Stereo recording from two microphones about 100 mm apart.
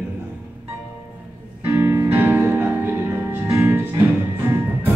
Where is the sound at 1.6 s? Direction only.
20° right (ahead or behind).